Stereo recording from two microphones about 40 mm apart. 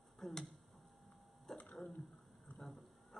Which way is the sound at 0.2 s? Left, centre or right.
Centre.